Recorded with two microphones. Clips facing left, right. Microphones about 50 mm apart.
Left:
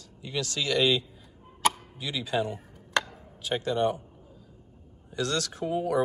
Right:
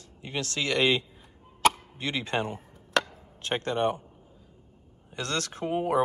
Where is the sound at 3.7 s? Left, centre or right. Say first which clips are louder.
Even; right.